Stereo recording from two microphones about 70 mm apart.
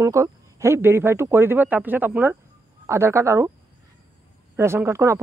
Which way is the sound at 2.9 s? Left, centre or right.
Right.